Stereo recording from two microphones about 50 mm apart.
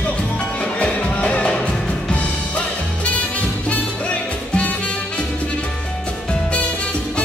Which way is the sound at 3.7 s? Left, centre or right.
Left.